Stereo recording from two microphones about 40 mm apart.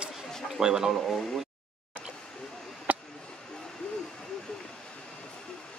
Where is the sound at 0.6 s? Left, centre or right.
Centre.